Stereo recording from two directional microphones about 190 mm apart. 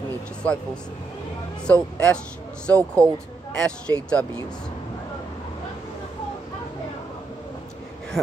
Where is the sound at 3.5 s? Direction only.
5° left (ahead or behind).